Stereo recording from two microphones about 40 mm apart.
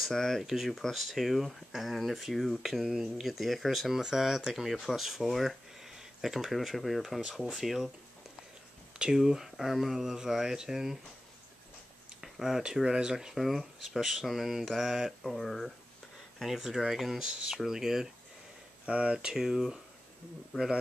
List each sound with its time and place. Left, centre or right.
0.1 s speech: centre
5.8 s a sound: centre
6.8 s speech: centre
9.1 s speech: centre
12.2 s speech: centre
13.3 s speech: centre
16.3 s speech: centre
16.9 s speech: centre
17.2 s speech: centre
18.9 s speech: right
19.1 s speech: centre
20.5 s speech: centre